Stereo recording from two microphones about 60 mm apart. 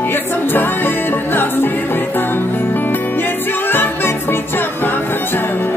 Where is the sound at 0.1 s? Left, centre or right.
Left.